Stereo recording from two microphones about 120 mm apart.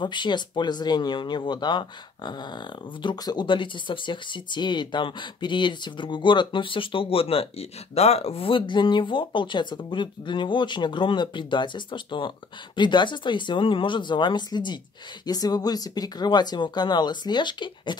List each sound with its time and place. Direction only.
0.0 s speech: 40° left (ahead or behind)